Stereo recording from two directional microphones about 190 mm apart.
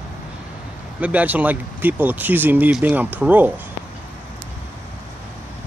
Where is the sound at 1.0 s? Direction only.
10° right (ahead or behind).